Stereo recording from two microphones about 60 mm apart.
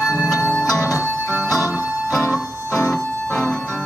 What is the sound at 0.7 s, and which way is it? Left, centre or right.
Music, left.